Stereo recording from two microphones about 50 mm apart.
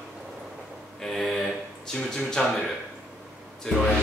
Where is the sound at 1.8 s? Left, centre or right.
Centre.